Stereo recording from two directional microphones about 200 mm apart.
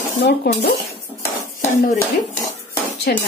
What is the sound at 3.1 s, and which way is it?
Dishes, 50° left (ahead or behind).